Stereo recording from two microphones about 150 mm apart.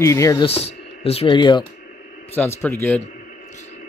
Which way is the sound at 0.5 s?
45° left (ahead or behind).